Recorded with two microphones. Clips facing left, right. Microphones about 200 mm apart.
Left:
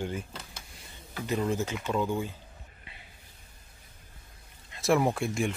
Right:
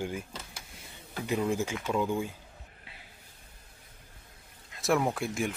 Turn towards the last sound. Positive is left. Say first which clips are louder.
# left 2 dB
turn(degrees=0)  # may be behind; listen again after turning